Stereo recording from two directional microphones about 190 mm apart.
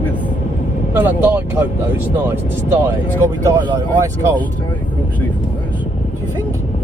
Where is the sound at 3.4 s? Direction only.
15° right (ahead or behind).